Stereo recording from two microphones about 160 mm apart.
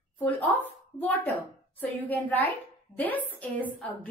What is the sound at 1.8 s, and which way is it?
A woman's voice, 10° left (ahead or behind).